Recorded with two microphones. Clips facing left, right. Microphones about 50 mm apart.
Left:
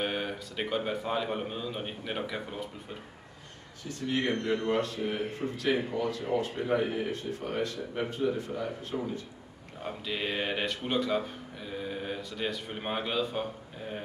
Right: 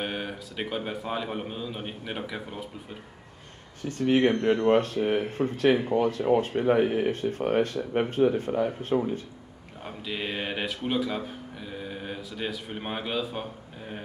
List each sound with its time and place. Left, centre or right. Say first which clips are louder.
0.0 s a man's voice: even; centre
3.9 s speech: right 8 dB; right
9.8 s speech: even; centre